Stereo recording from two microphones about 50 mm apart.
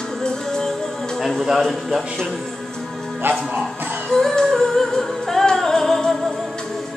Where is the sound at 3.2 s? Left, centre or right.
Right.